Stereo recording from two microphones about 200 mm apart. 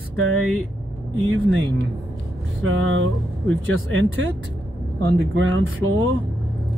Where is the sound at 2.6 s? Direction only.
75° right (ahead or behind).